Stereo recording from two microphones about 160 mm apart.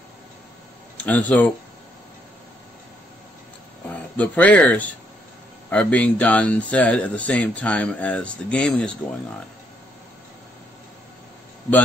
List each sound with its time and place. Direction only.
1.0 s speech: 10° left (ahead or behind)
4.2 s speech: 10° left (ahead or behind)